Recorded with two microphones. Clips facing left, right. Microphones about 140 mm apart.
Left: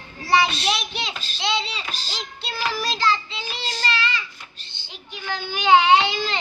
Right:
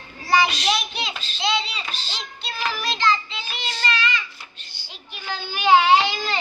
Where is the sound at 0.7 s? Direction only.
Centre (ahead or behind).